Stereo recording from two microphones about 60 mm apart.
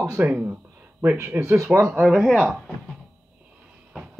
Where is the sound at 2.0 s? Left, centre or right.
Centre.